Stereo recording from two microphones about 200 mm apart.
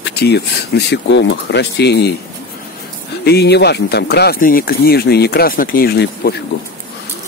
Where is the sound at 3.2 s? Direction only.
55° left (ahead or behind).